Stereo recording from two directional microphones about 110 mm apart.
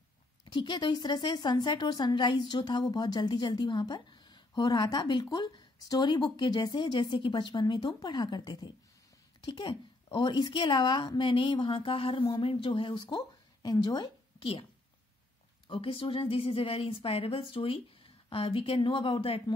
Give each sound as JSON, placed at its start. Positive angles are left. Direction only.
{"t": 0.5, "sound": "a woman's voice", "side_deg": 45}
{"t": 15.7, "sound": "a woman's voice", "side_deg": 55}